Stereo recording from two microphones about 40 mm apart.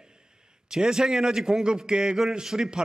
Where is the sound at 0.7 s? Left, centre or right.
Centre.